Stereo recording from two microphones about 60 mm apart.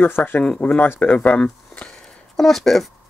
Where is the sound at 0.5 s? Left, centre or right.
Left.